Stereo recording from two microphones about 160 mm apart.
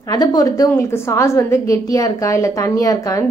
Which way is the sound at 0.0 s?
25° left (ahead or behind).